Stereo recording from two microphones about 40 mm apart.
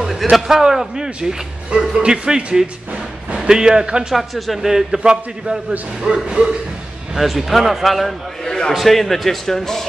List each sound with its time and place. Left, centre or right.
0.2 s a man's voice: centre
4.1 s a man's voice: centre
4.6 s a man's voice: centre
7.2 s a man's voice: centre